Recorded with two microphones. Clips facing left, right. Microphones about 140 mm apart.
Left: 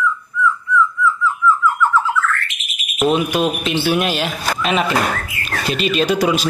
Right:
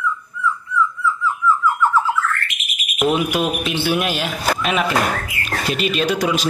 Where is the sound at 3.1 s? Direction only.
20° left (ahead or behind).